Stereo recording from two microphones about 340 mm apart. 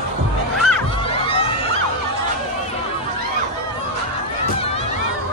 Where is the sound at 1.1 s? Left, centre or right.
Centre.